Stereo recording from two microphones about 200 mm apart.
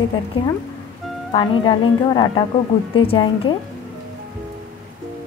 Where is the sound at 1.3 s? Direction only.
25° left (ahead or behind).